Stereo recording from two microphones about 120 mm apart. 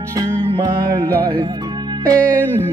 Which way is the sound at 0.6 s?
35° right (ahead or behind).